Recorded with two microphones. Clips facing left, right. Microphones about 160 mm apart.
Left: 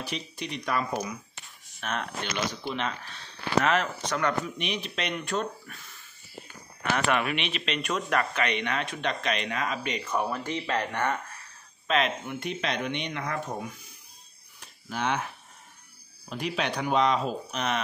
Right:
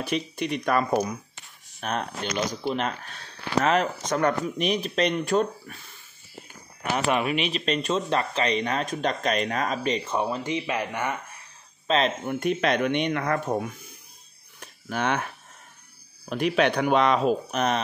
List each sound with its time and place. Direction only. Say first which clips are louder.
0.0 s speech: right 8 dB; 55° right (ahead or behind); by 5.8 s 40° right (ahead or behind)
7.1 s speech: right 6 dB; 5° right (ahead or behind)
7.5 s speech: right 5 dB; 40° right (ahead or behind)
7.9 s speech: even; 30° right (ahead or behind); by 11.1 s 10° right (ahead or behind)
11.9 s speech: right 3 dB; 30° right (ahead or behind)
12.3 s speech: right 8 dB; 50° right (ahead or behind)
14.6 s a sound: right 3 dB; 55° right (ahead or behind)
16.3 s speech: right 8 dB; 60° right (ahead or behind)
17.6 s speech: right 5 dB; 40° right (ahead or behind)